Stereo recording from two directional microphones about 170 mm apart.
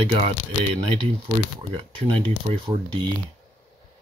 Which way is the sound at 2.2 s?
30° right (ahead or behind).